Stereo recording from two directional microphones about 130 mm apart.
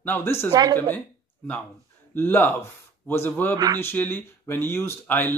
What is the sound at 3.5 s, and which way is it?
Speech, 30° right (ahead or behind).